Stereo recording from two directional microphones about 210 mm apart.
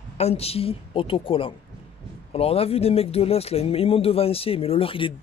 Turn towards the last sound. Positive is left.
turn(degrees=25)  # may be behind; listen again after turning